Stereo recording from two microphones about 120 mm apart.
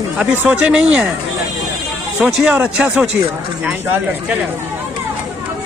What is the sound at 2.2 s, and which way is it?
Speech, 15° right (ahead or behind).